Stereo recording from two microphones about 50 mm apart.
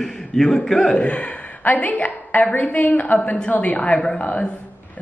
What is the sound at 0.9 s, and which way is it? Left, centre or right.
A woman's voice, left.